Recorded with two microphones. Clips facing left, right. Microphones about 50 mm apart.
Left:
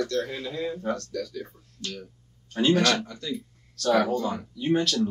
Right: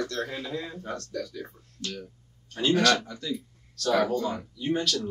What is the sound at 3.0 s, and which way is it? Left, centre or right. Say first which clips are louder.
Speech: even; centre.